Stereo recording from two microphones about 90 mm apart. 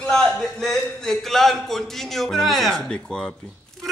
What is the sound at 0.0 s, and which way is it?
A man's voice, 10° left (ahead or behind).